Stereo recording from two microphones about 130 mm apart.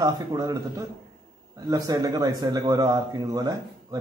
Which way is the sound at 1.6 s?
30° right (ahead or behind).